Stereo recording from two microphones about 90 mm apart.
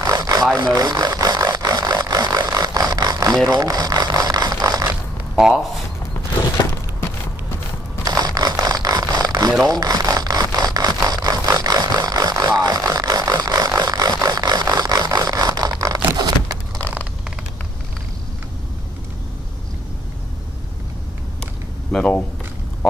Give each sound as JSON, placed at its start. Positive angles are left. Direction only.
{"t": 0.0, "sound": "rub", "side_deg": -40}
{"t": 0.6, "sound": "a sound", "side_deg": -45}
{"t": 3.4, "sound": "mechanisms", "side_deg": -45}
{"t": 5.4, "sound": "speech", "side_deg": -5}
{"t": 8.0, "sound": "a sound", "side_deg": -45}
{"t": 21.9, "sound": "speech", "side_deg": 15}